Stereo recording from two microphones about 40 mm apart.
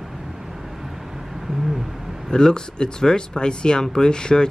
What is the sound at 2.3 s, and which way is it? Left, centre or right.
Speech, centre.